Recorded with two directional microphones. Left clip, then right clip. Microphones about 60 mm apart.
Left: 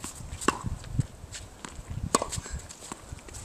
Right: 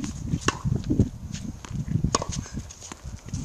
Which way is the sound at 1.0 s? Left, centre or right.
Centre.